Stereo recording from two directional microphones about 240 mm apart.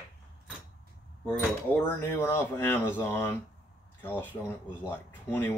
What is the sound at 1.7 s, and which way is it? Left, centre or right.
Speech, centre.